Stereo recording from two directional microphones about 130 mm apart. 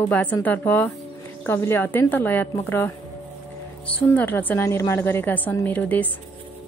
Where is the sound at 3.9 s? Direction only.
15° left (ahead or behind).